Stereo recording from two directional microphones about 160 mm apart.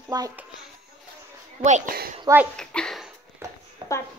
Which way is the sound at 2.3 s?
20° right (ahead or behind).